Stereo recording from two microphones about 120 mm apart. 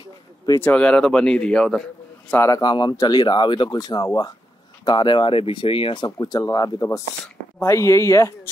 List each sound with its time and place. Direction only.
0.6 s speech: 10° left (ahead or behind)
2.3 s speech: 25° left (ahead or behind)
2.6 s speech: 35° left (ahead or behind)